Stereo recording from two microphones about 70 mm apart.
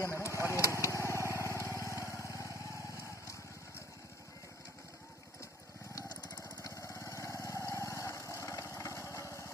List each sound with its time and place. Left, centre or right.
0.0 s vehicle: left
1.1 s vehicle: right
1.4 s vehicle: left
6.6 s vehicle: left